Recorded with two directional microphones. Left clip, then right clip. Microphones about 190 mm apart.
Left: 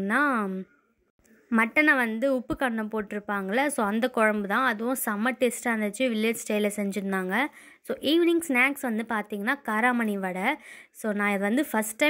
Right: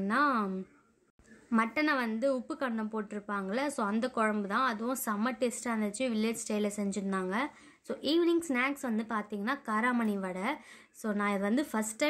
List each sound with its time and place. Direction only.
0.0 s a woman's voice: 25° left (ahead or behind)
1.5 s a woman's voice: 25° left (ahead or behind)